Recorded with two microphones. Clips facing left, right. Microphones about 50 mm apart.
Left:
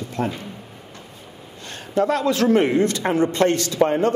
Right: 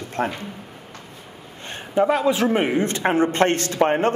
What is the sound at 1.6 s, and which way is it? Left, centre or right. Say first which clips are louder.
Speech: right 1 dB; right.